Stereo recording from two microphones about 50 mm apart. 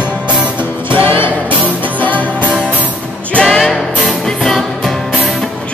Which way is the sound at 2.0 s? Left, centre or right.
Left.